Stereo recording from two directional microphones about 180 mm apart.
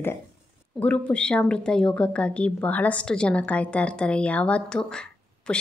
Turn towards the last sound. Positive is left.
turn(degrees=5)  # may be behind; listen again after turning